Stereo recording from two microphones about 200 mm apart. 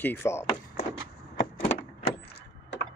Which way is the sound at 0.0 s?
10° left (ahead or behind).